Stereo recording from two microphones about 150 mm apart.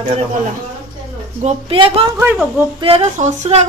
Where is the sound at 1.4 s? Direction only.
40° right (ahead or behind).